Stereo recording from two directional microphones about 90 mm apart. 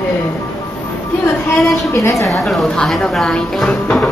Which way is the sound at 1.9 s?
35° left (ahead or behind).